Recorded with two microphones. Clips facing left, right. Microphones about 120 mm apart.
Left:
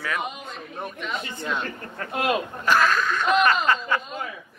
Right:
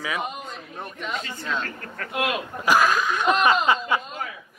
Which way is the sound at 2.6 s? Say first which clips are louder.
Right 2 dB; 10° right (ahead or behind).